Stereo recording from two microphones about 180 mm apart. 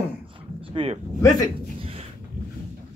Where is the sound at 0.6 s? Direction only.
30° right (ahead or behind).